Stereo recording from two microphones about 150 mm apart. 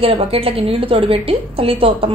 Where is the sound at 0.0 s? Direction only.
40° right (ahead or behind).